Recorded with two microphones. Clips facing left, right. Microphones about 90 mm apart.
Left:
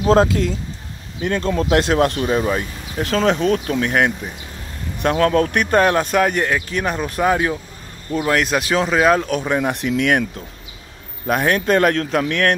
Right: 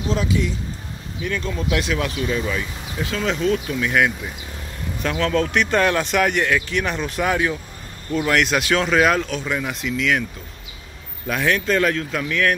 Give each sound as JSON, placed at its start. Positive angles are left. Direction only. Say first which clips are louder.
{"t": 0.2, "sound": "speech", "louder": "left 6 dB", "side_deg": 90}
{"t": 1.3, "sound": "speech", "louder": "left 7 dB", "side_deg": 50}
{"t": 2.3, "sound": "speech", "louder": "left 5 dB", "side_deg": 40}
{"t": 3.0, "sound": "speech", "louder": "left 5 dB", "side_deg": 65}
{"t": 5.8, "sound": "speech", "louder": "left 4 dB", "side_deg": 30}
{"t": 9.7, "sound": "speech", "louder": "left 3 dB", "side_deg": 55}
{"t": 11.2, "sound": "speech", "louder": "left 3 dB", "side_deg": 45}